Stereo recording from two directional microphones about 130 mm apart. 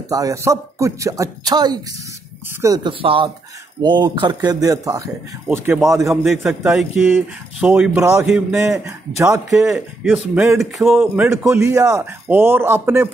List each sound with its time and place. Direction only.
0.1 s speech: 25° right (ahead or behind)
2.9 s speech: 40° right (ahead or behind); by 6.1 s 25° right (ahead or behind)
6.2 s speech: 5° right (ahead or behind)
7.9 s speech: 20° right (ahead or behind)
8.3 s speech: 10° right (ahead or behind)
10.9 s speech: 15° right (ahead or behind)